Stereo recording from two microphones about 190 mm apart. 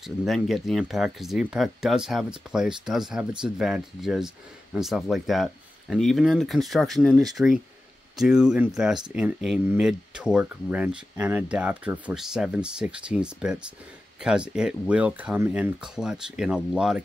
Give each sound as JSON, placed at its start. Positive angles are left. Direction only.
{"t": 0.0, "sound": "speech", "side_deg": 0}